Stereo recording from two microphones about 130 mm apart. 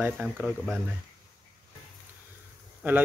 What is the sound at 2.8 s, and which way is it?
Speech, 15° right (ahead or behind).